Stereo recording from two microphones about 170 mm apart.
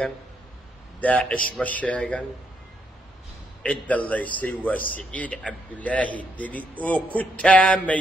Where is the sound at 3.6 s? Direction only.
10° left (ahead or behind).